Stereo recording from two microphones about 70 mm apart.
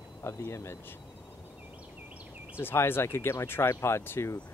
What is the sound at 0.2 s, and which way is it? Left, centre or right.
Speech, left.